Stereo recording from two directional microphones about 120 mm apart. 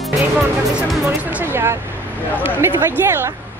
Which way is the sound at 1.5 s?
20° right (ahead or behind).